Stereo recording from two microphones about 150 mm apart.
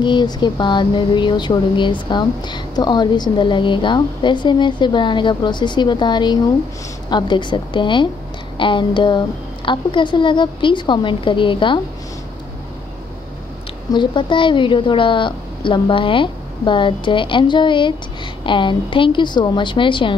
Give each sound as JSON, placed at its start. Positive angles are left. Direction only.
{"t": 0.0, "sound": "speech", "side_deg": 30}
{"t": 13.9, "sound": "speech", "side_deg": 35}